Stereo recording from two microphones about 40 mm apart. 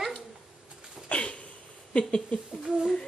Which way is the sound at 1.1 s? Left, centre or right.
Left.